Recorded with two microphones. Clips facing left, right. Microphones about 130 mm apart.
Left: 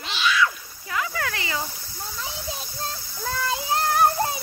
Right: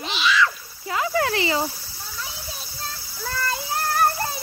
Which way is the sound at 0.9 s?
30° right (ahead or behind).